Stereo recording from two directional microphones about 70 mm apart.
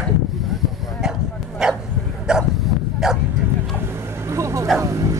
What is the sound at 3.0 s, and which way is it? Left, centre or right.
Bow-wow, centre.